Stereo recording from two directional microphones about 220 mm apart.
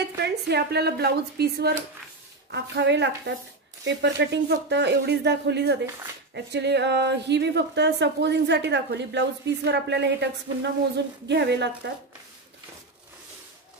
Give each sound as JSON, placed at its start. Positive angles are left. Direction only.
{"t": 0.2, "sound": "a woman's voice", "side_deg": -50}